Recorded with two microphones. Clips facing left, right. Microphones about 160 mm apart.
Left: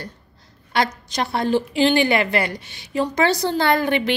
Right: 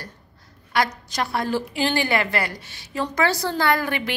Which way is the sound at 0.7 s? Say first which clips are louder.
Left 2 dB; 25° left (ahead or behind).